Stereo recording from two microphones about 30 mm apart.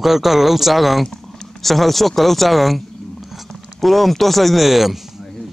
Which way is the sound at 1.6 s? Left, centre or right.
Centre.